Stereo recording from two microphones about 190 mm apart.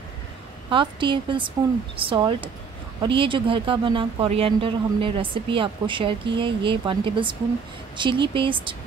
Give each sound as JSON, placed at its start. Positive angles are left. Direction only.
{"t": 0.7, "sound": "speech", "side_deg": -25}